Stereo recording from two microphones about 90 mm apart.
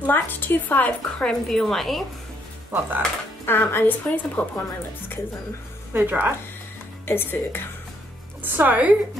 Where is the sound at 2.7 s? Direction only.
20° right (ahead or behind).